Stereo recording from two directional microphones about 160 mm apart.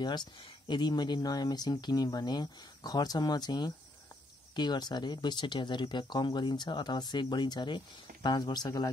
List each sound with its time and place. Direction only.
0.0 s speech: 25° left (ahead or behind)